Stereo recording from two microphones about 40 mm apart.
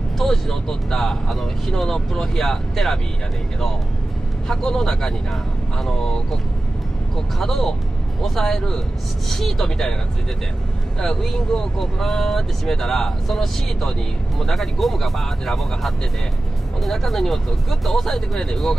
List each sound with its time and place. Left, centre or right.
0.2 s speech: centre
4.5 s speech: centre
7.3 s speech: centre
11.0 s speech: centre